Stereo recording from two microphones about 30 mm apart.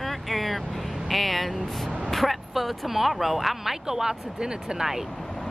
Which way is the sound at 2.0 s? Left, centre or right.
Centre.